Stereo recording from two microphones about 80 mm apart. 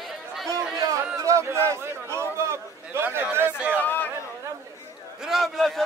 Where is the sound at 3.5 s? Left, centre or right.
Right.